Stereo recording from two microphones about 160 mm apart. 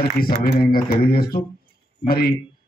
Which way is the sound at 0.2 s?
70° left (ahead or behind).